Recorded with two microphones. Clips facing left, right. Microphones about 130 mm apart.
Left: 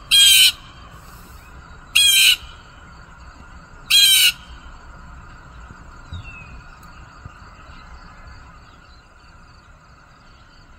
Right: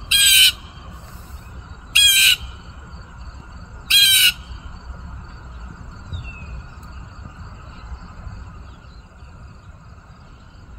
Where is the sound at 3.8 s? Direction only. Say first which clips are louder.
Right 1 dB; 35° left (ahead or behind).